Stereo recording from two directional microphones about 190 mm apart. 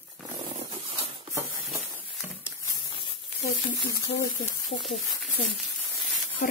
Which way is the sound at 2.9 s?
25° left (ahead or behind).